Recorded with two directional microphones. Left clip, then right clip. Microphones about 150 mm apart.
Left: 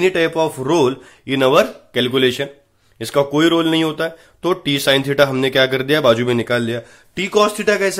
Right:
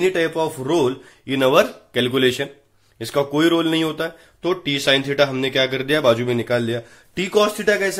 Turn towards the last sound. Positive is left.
turn(degrees=20)  # may be behind; listen again after turning